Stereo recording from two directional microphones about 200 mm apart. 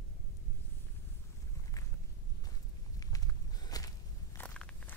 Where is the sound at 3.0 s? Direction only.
20° left (ahead or behind).